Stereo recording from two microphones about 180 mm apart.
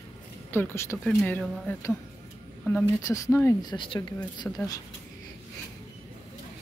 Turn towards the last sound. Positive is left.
turn(degrees=20)  # may be behind; listen again after turning